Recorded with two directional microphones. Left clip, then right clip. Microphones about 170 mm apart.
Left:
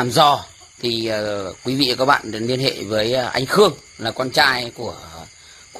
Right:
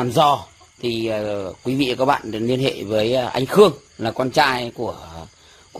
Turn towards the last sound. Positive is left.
turn(degrees=-40)  # may be behind; listen again after turning